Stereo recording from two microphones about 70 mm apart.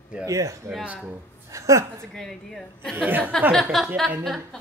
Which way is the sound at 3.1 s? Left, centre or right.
Right.